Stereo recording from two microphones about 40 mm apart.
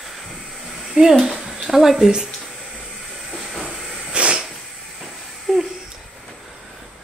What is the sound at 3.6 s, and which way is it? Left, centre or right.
Hiss, right.